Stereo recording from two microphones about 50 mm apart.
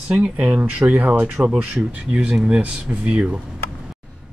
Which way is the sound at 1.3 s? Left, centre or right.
Centre.